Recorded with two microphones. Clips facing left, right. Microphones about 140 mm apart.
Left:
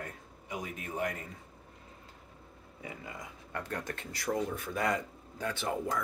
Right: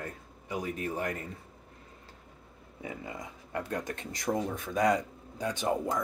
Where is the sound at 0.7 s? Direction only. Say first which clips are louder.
Left 2 dB; 35° right (ahead or behind).